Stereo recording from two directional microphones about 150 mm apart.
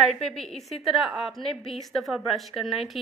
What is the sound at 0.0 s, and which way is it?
A woman's voice, centre (ahead or behind).